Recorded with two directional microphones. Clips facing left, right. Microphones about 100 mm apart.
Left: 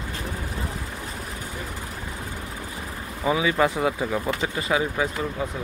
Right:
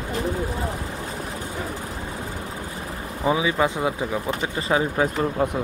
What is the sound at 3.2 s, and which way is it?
Speech, 20° right (ahead or behind).